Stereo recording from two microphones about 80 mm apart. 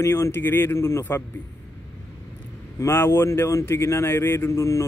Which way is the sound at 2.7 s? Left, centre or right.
Left.